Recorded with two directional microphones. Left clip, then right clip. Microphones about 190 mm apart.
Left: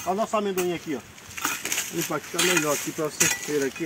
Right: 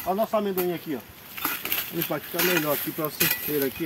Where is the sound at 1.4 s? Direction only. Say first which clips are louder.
Left 2 dB; 15° right (ahead or behind).